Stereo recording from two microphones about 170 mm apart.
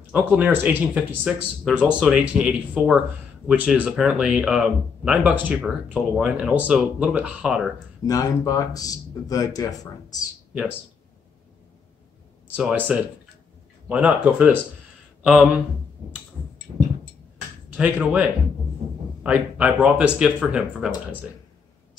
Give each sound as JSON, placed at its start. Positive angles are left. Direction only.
{"t": 0.1, "sound": "speech", "side_deg": -10}
{"t": 8.1, "sound": "speech", "side_deg": 20}
{"t": 12.5, "sound": "speech", "side_deg": -5}
{"t": 16.7, "sound": "a sound", "side_deg": -20}
{"t": 17.7, "sound": "speech", "side_deg": -10}
{"t": 19.2, "sound": "speech", "side_deg": -5}